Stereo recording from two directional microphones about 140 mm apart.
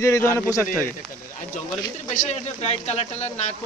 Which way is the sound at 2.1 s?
55° left (ahead or behind).